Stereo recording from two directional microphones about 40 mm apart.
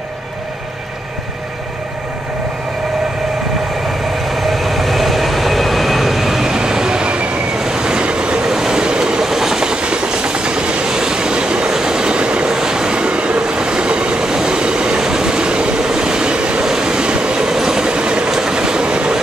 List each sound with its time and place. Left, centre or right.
4.3 s train: centre; by 7.3 s right
7.5 s train: centre
9.2 s train: centre; by 12.5 s right
12.5 s train: centre